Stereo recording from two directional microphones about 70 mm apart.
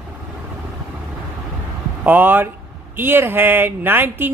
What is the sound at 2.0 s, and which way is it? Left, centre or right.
Speech, right.